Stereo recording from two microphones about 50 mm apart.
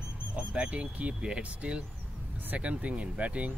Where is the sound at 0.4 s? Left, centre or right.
Right.